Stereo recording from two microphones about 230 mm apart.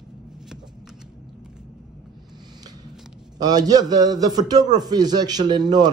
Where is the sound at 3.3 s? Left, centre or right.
Centre.